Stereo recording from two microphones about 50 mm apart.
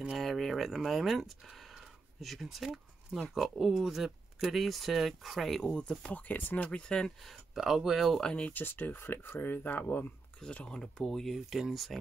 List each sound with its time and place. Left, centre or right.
0.2 s speech: centre
5.6 s speech: centre
7.2 s speech: centre
8.2 s speech: centre
8.5 s speech: left
10.5 s speech: left
10.8 s speech: centre